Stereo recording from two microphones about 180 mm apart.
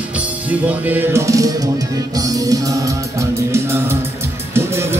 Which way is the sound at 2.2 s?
20° right (ahead or behind).